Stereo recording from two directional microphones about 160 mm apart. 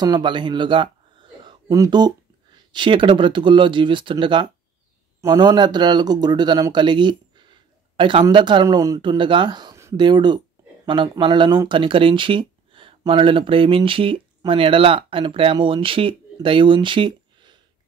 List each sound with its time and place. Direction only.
0.0 s speech: 25° right (ahead or behind)